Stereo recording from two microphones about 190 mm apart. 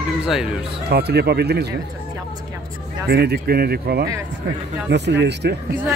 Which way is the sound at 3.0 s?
60° right (ahead or behind).